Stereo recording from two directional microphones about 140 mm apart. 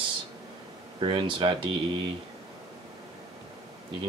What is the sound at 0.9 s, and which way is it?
Speech, 35° right (ahead or behind).